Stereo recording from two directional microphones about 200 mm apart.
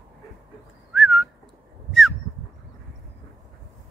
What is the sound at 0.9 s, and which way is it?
Whistling, centre (ahead or behind).